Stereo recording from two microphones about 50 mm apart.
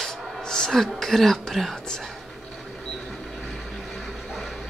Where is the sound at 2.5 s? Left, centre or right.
Centre.